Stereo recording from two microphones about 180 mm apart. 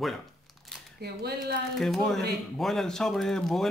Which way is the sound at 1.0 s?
65° right (ahead or behind).